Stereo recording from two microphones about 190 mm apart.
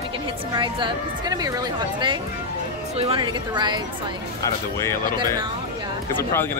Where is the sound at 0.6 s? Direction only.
25° right (ahead or behind).